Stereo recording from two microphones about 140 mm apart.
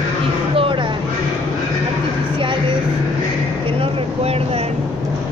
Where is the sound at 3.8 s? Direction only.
45° right (ahead or behind).